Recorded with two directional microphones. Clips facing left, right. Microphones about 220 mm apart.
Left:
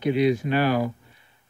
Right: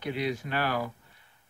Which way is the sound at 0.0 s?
20° left (ahead or behind).